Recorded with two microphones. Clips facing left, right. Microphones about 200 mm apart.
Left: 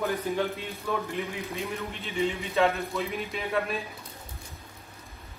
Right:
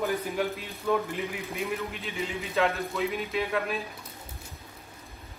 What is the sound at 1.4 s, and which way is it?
A man's voice, centre (ahead or behind).